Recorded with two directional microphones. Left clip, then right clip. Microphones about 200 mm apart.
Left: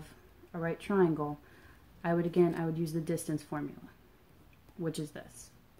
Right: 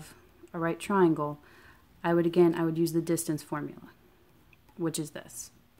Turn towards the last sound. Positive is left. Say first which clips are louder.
# right 5 dB
turn(degrees=-35)  # may be behind; listen again after turning